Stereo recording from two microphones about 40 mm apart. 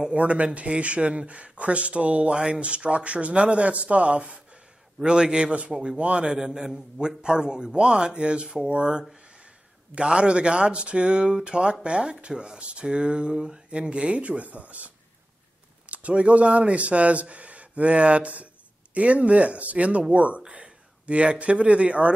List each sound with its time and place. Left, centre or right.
0.1 s speech: right
2.3 s speech: centre
2.6 s speech: right
5.7 s a man's voice: centre
5.9 s speech: right
6.2 s a man's voice: centre; by 14.9 s right
15.9 s speech: right